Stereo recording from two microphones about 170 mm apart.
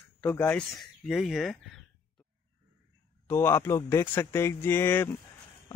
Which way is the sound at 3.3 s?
10° left (ahead or behind).